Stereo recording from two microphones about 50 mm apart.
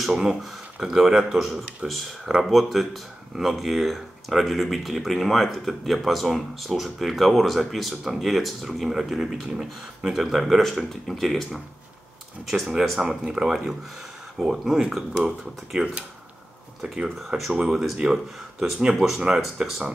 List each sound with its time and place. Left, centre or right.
0.1 s speech: centre
1.8 s speech: right
2.4 s speech: centre
16.8 s speech: centre